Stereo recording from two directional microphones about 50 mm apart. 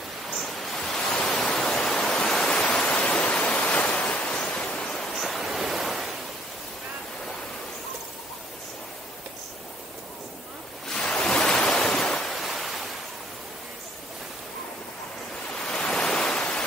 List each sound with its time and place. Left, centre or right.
0.3 s pink noise: centre
3.0 s waves: left
4.6 s pink noise: centre
5.1 s waves: centre
10.9 s waves: centre
12.2 s ocean: centre
15.6 s waves: centre